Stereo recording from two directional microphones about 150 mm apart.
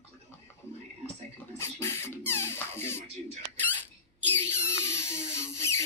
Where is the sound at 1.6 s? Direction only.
15° left (ahead or behind).